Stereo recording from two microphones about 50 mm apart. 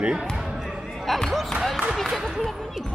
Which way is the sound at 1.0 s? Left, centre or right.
Centre.